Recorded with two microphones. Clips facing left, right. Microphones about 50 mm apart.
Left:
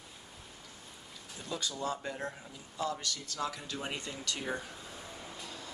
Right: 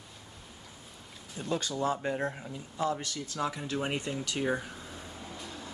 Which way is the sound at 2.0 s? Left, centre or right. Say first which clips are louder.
Right 7 dB; right.